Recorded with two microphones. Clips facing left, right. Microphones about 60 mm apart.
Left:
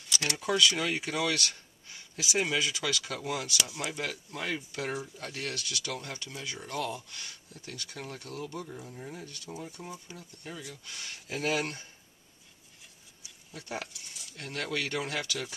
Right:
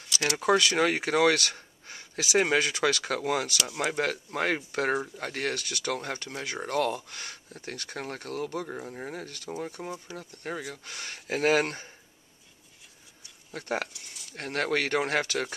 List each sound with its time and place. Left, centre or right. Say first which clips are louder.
0.2 s speech: right 4 dB; right
9.8 s speech: right 5 dB; right
10.1 s speech: right 8 dB; right
13.5 s speech: right 7 dB; right